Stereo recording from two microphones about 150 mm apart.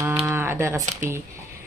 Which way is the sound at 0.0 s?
10° right (ahead or behind).